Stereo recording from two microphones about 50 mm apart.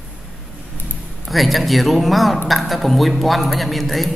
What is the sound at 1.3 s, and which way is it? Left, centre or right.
A man's voice, centre.